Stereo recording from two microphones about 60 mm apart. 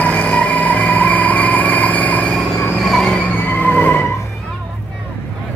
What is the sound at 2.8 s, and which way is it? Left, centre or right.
Vehicle, centre.